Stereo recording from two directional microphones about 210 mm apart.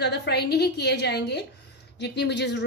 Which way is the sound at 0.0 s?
50° left (ahead or behind).